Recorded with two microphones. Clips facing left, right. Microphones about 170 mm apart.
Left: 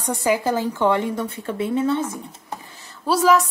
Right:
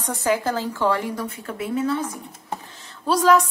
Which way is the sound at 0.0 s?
10° left (ahead or behind).